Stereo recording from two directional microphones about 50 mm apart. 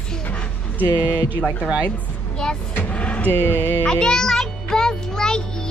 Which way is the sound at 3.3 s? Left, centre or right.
Left.